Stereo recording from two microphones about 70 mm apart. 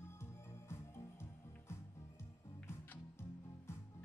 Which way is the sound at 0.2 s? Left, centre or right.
Left.